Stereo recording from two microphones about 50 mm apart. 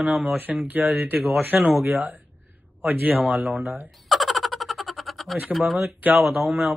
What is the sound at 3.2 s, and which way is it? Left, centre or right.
Speech, centre.